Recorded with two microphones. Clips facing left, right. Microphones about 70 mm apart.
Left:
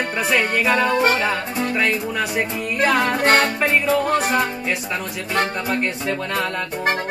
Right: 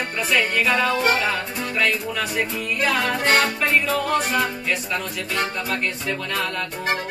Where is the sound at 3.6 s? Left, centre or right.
Left.